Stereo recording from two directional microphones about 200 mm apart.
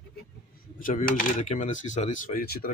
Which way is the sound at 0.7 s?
45° left (ahead or behind).